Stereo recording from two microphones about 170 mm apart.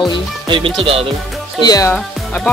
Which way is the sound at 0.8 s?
35° right (ahead or behind).